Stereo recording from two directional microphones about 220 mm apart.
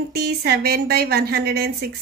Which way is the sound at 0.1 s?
45° right (ahead or behind).